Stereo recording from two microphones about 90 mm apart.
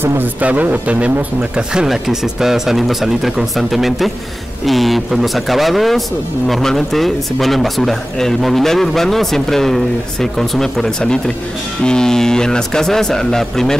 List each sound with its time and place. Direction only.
0.0 s a man's voice: 25° right (ahead or behind); by 13.7 s 5° left (ahead or behind)